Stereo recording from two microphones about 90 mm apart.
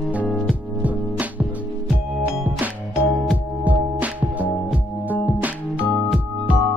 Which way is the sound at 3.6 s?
15° right (ahead or behind).